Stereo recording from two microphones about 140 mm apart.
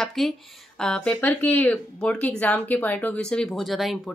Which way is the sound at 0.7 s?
5° left (ahead or behind).